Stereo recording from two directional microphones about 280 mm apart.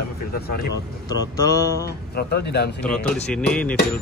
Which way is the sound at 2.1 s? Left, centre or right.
Left.